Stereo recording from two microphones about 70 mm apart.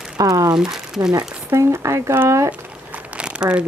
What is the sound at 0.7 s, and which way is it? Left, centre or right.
Speech, centre.